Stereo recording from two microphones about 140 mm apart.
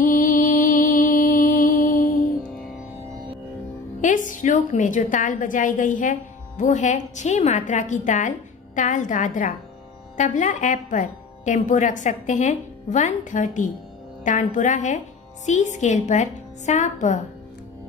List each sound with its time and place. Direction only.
0.0 s music: 75° left (ahead or behind)
4.0 s a woman's voice: 65° left (ahead or behind)